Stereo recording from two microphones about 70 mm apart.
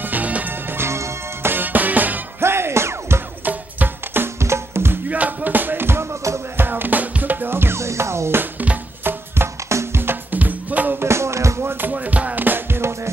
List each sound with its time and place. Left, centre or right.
0.0 s music: right
1.5 s music: right
2.4 s music: right
5.1 s music: right
9.3 s music: right
11.0 s music: right
11.6 s music: right